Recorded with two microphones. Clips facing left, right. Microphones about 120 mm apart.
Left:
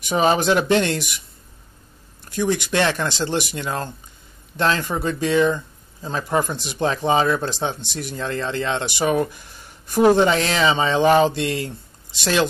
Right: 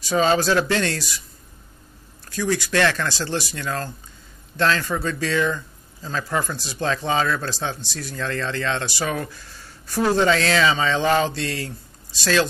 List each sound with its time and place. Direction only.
0.0 s speech: 20° left (ahead or behind)
2.2 s speech: 20° left (ahead or behind)